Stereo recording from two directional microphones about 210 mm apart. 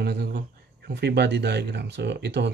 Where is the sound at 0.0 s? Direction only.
45° right (ahead or behind).